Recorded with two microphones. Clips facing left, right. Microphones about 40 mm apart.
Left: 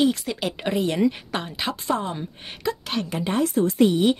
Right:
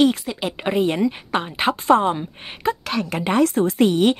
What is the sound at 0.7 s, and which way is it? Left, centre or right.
Speech, right.